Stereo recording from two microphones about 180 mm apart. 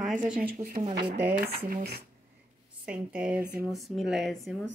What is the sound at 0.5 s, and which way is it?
Speech, 40° right (ahead or behind).